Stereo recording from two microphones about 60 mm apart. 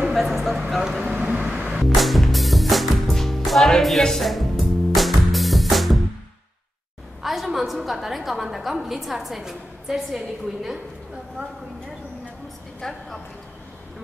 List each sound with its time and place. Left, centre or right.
0.0 s a sound: centre
1.1 s vehicle: right
1.8 s music: centre
7.2 s a woman's voice: centre
12.8 s a woman's voice: centre